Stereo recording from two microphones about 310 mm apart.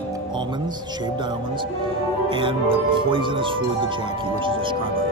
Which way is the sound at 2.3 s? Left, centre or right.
Centre.